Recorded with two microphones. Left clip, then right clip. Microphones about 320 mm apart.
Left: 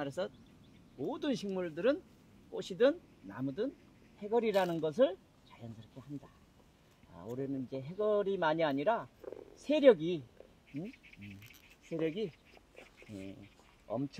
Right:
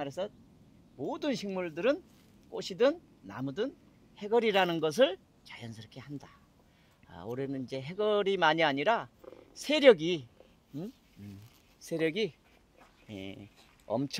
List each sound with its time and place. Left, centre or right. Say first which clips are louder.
0.0 s speech: right 2 dB; centre; by 4.7 s right
4.8 s a sound: right 4 dB; right
7.3 s speech: right 2 dB; right
11.9 s speech: right 5 dB; right
13.8 s speech: right 5 dB; right